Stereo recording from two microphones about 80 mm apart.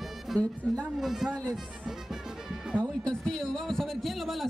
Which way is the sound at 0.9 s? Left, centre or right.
Centre.